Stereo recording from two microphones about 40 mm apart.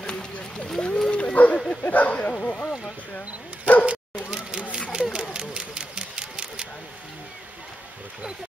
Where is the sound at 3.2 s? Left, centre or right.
Left.